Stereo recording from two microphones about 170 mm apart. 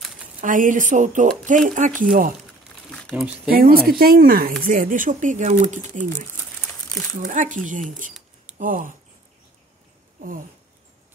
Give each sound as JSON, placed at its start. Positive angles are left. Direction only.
{"t": 0.4, "sound": "speech", "side_deg": -50}
{"t": 2.9, "sound": "a sound", "side_deg": 5}
{"t": 3.5, "sound": "speech", "side_deg": -60}
{"t": 6.6, "sound": "crumpling", "side_deg": 5}
{"t": 7.2, "sound": "speech", "side_deg": -50}